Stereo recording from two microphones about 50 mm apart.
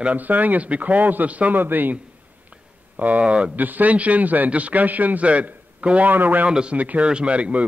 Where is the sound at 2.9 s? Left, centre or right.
Right.